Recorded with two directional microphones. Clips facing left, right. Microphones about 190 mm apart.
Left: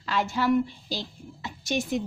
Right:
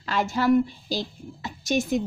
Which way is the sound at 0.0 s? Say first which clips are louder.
Right 2 dB; 45° right (ahead or behind).